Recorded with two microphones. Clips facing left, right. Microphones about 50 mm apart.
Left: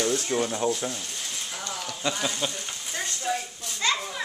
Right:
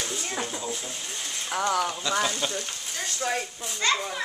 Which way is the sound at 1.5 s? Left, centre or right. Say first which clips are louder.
Right 14 dB; right.